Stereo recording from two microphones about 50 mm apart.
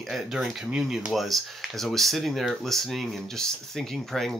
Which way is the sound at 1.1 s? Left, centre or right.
Centre.